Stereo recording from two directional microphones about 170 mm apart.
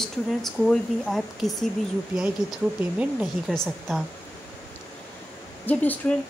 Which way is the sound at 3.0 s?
5° right (ahead or behind).